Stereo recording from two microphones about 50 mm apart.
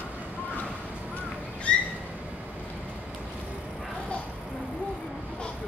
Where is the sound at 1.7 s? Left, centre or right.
Left.